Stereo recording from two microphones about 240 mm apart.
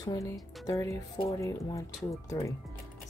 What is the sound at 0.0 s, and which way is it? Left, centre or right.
Speech, centre.